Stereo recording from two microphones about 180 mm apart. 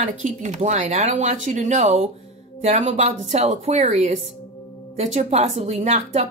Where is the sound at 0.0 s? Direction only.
40° right (ahead or behind).